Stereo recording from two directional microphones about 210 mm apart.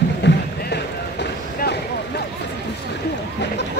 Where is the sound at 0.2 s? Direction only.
55° left (ahead or behind).